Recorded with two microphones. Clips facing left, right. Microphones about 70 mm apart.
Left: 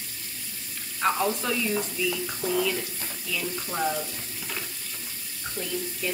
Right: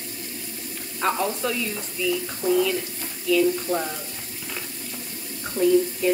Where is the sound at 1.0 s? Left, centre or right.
Centre.